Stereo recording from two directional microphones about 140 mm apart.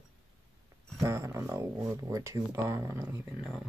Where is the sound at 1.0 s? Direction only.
20° right (ahead or behind).